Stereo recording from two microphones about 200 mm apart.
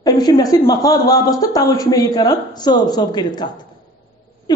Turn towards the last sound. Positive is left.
turn(degrees=20)  # may be behind; listen again after turning